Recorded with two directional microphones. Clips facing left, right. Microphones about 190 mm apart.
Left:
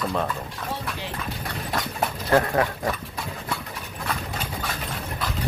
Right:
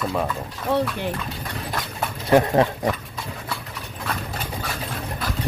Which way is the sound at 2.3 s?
20° right (ahead or behind).